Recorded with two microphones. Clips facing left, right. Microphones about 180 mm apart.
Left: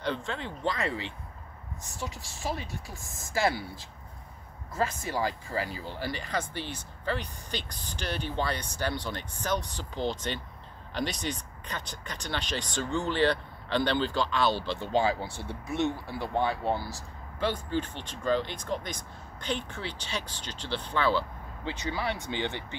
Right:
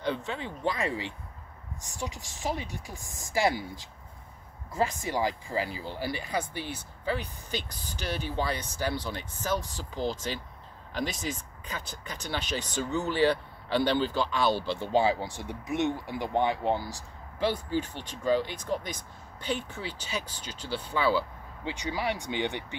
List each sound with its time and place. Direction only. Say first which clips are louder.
0.0 s speech: right 1 dB; 10° right (ahead or behind)